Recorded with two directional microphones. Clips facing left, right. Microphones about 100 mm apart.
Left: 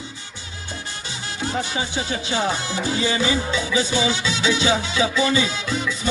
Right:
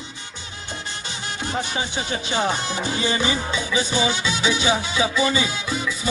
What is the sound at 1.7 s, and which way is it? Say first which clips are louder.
Music: left 1 dB; 20° right (ahead or behind).